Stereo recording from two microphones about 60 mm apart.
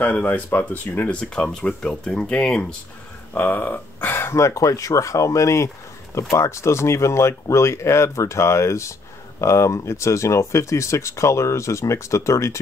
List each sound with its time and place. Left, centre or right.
0.0 s speech: left
1.3 s speech: centre
3.3 s speech: left
4.4 s speech: left